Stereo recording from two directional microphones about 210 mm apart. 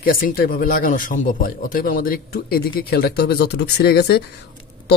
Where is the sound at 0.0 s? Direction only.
45° left (ahead or behind).